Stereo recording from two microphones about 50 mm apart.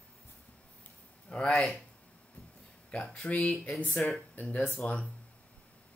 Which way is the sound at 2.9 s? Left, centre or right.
Left.